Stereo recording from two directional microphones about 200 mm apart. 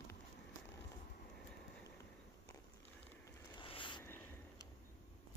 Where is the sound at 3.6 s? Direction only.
25° left (ahead or behind).